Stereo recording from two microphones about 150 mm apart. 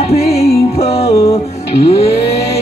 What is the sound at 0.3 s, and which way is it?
Music, 45° left (ahead or behind).